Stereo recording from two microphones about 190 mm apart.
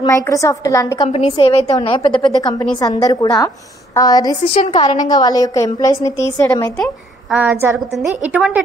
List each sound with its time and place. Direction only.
0.0 s a woman's voice: 15° left (ahead or behind)
1.0 s a woman's voice: 30° left (ahead or behind); by 6.7 s 15° left (ahead or behind)
6.8 s a woman's voice: 5° right (ahead or behind)